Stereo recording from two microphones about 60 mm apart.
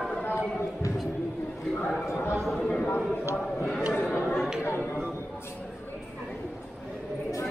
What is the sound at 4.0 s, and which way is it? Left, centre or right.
Chatter, left.